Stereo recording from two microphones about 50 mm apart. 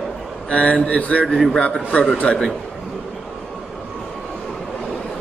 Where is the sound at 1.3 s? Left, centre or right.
Centre.